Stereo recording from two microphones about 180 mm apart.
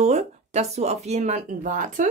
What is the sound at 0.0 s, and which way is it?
Speech, 40° right (ahead or behind).